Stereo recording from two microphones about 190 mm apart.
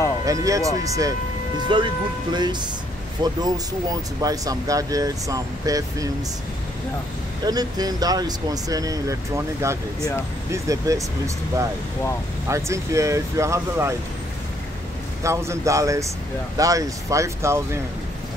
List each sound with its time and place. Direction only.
0.2 s speech: 15° right (ahead or behind)
7.4 s speech: 20° right (ahead or behind)
15.2 s speech: 15° right (ahead or behind)